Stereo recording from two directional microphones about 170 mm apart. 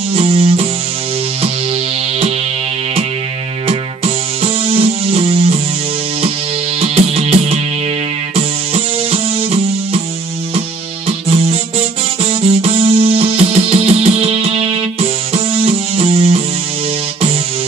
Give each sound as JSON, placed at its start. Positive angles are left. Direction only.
{"t": 0.1, "sound": "music", "side_deg": -35}
{"t": 3.6, "sound": "music", "side_deg": -35}
{"t": 6.8, "sound": "music", "side_deg": -35}
{"t": 11.1, "sound": "music", "side_deg": -35}